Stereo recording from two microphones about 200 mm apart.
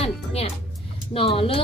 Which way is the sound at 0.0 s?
30° left (ahead or behind).